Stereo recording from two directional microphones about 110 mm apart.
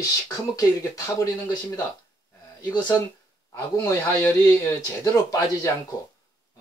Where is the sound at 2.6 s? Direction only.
40° left (ahead or behind).